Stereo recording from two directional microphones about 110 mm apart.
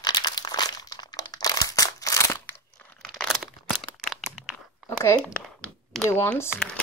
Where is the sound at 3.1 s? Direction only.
5° left (ahead or behind).